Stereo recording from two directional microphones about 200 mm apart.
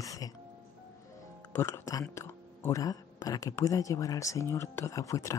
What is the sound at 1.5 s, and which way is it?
Speech, 15° left (ahead or behind).